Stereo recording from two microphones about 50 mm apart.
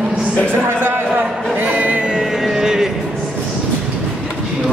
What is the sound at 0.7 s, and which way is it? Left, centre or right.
Speech, right.